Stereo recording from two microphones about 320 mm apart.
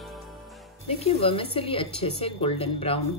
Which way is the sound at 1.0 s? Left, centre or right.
Centre.